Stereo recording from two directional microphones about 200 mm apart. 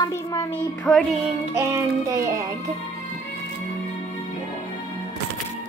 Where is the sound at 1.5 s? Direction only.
15° right (ahead or behind).